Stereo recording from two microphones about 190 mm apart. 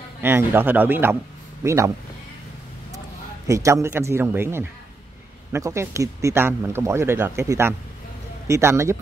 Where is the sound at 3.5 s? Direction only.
15° right (ahead or behind).